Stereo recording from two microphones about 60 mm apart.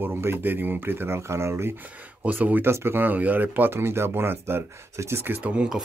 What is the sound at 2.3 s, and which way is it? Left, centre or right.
Speech, right.